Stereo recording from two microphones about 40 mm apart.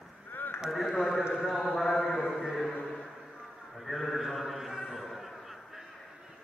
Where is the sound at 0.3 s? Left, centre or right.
Left.